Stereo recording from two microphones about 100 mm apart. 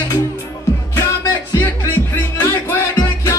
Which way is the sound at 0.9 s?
30° left (ahead or behind).